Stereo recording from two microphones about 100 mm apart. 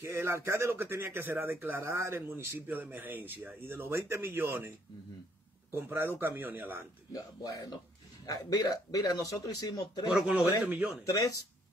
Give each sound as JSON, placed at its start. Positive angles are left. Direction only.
{"t": 0.0, "sound": "speech", "side_deg": -25}
{"t": 7.1, "sound": "speech", "side_deg": 35}
{"t": 10.0, "sound": "speech", "side_deg": -15}
{"t": 11.1, "sound": "speech", "side_deg": 35}